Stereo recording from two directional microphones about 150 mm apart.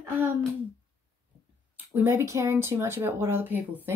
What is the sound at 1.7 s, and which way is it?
A child's voice, 15° right (ahead or behind).